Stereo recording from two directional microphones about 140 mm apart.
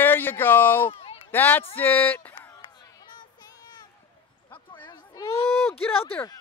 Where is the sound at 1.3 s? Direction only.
15° left (ahead or behind).